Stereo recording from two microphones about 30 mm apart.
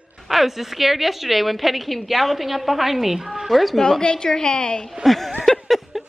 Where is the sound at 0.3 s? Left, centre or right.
Centre.